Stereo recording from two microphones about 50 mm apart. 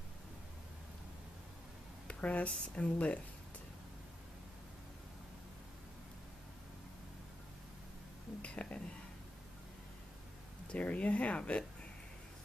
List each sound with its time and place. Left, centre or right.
2.0 s speech: left
8.4 s whispering: left
10.7 s speech: left